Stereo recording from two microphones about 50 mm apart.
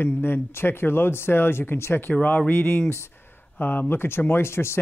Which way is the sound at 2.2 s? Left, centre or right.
Left.